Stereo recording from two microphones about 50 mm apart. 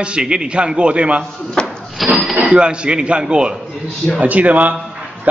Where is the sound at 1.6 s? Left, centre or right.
Centre.